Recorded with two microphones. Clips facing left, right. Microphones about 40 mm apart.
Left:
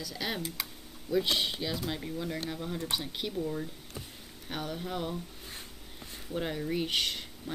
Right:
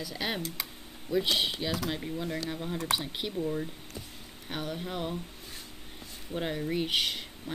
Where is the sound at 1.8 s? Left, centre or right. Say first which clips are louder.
Right 1 dB; centre.